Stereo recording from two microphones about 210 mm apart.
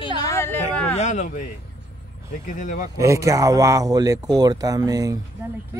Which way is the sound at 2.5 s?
35° left (ahead or behind).